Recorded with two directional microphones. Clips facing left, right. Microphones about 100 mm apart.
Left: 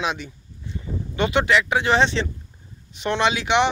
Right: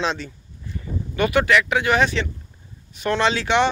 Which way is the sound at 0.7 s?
25° left (ahead or behind).